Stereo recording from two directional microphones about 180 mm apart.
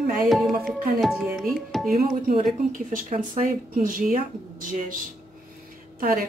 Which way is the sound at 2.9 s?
45° right (ahead or behind).